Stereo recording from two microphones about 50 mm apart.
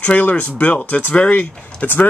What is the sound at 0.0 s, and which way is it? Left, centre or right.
Speech, left.